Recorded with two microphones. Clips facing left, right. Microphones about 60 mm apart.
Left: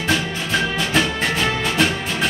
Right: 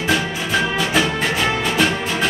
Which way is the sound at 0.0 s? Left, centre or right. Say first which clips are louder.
Right 2 dB; centre.